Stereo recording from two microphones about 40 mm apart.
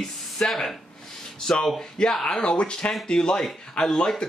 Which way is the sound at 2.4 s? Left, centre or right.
Left.